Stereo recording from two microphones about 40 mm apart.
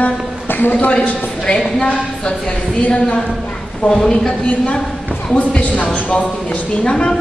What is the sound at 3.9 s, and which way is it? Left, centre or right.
A woman's voice, centre.